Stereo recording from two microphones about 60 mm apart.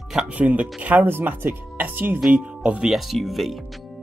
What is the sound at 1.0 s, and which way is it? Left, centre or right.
Speech, right.